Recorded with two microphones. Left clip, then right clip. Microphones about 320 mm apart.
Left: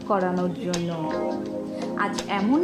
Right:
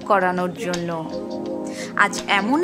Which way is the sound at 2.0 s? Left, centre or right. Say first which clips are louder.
Right 9 dB; right.